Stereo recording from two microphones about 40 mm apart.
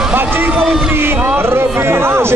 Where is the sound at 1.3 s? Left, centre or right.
Right.